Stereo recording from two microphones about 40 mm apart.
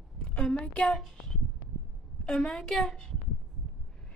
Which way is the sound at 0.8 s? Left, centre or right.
Centre.